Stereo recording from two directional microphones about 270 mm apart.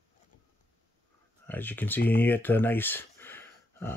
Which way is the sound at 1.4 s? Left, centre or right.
Centre.